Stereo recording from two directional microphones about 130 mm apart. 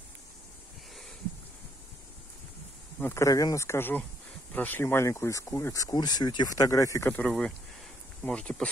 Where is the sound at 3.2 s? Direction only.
25° left (ahead or behind); by 8.6 s 5° left (ahead or behind).